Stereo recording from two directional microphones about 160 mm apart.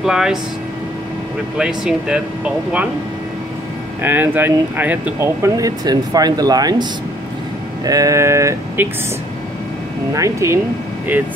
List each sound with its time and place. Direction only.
0.0 s speech: 5° right (ahead or behind)
1.6 s speech: 5° right (ahead or behind)
4.0 s speech: 10° right (ahead or behind)
10.1 s speech: 20° right (ahead or behind)